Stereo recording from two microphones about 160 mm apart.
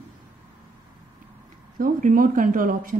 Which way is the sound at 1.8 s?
55° right (ahead or behind).